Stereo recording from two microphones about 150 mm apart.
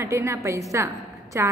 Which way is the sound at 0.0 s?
20° right (ahead or behind).